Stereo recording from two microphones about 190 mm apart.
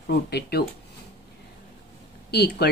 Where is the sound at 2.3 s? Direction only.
60° left (ahead or behind).